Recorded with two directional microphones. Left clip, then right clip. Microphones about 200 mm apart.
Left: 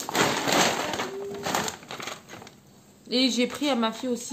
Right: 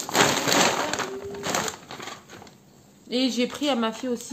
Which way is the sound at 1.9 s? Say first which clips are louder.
Left 1 dB; 30° left (ahead or behind).